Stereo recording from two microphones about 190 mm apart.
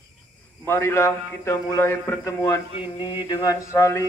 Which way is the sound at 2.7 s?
25° left (ahead or behind).